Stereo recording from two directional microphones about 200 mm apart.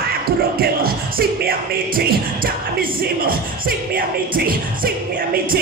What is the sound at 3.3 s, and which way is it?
Music, 45° right (ahead or behind).